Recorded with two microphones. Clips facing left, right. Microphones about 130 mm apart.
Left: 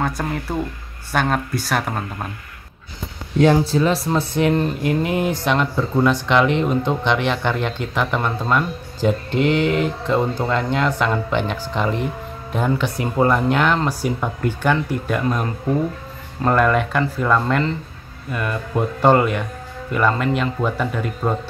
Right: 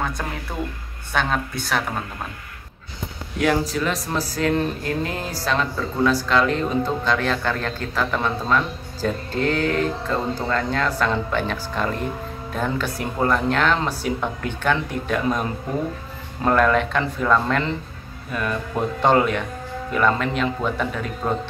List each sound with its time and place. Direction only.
1.1 s speech: 5° left (ahead or behind)
3.6 s speech: 30° left (ahead or behind); by 15.2 s 5° left (ahead or behind)
16.4 s speech: 5° left (ahead or behind)